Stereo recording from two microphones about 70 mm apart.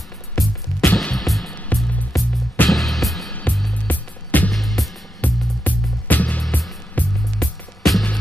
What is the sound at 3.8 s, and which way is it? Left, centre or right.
Music, left.